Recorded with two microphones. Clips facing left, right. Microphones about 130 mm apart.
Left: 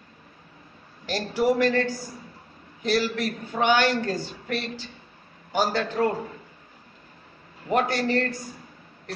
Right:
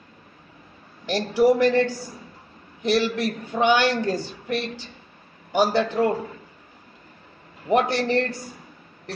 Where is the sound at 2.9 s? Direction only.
15° right (ahead or behind).